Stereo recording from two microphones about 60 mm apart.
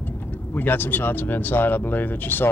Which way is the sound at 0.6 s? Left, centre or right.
Left.